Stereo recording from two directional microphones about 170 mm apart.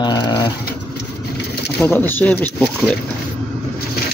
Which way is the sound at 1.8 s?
10° left (ahead or behind).